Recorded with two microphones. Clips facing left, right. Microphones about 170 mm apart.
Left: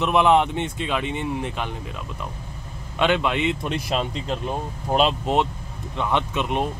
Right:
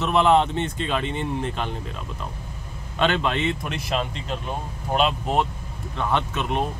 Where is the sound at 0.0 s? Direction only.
15° left (ahead or behind).